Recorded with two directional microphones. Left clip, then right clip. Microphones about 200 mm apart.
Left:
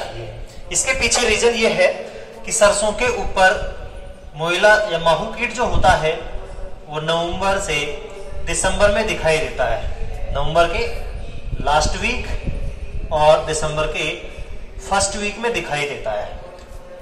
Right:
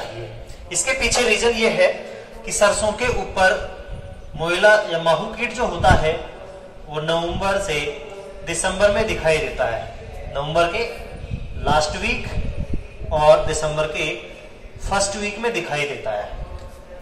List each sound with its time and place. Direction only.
0.7 s a man's voice: 10° right (ahead or behind)